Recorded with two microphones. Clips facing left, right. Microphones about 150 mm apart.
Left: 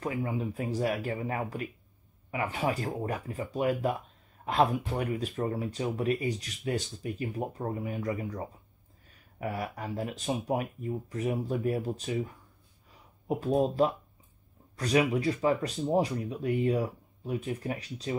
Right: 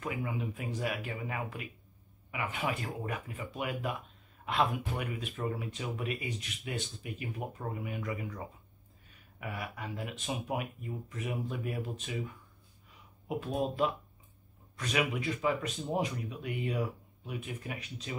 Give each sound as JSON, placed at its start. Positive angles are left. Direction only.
{"t": 0.0, "sound": "speech", "side_deg": 35}
{"t": 13.3, "sound": "speech", "side_deg": 35}
{"t": 14.8, "sound": "speech", "side_deg": 35}